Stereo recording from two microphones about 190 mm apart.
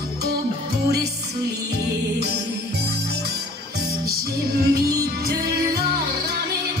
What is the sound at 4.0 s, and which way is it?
Music, 55° right (ahead or behind).